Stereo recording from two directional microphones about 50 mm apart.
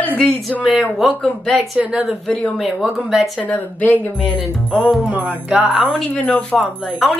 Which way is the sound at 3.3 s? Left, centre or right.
Left.